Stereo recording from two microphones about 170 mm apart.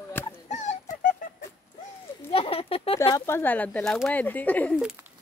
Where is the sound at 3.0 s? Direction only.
20° left (ahead or behind).